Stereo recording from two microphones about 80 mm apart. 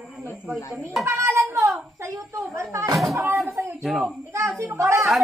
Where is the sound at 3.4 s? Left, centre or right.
Right.